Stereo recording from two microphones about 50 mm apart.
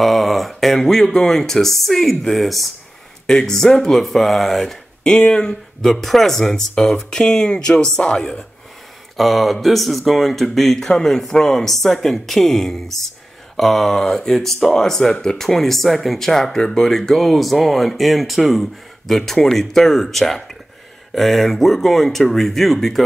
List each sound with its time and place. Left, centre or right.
0.0 s speech: centre
5.0 s speech: left
5.9 s speech: centre
9.1 s speech: centre